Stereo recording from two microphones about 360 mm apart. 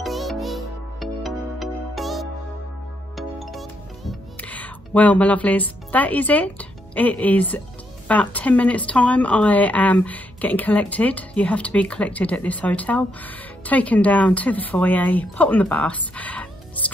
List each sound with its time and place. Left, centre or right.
0.0 s music: centre
8.1 s a woman's voice: centre